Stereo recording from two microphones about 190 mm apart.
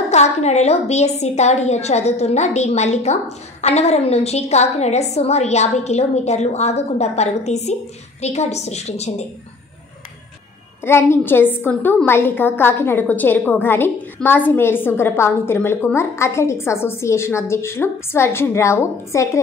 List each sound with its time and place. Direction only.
0.1 s a woman's voice: 35° left (ahead or behind)
10.8 s a woman's voice: 10° left (ahead or behind)